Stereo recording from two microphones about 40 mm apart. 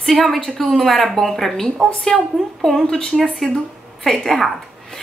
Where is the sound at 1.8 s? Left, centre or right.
Left.